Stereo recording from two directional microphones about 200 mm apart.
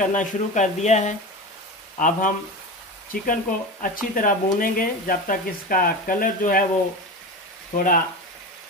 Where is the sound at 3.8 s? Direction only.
40° left (ahead or behind).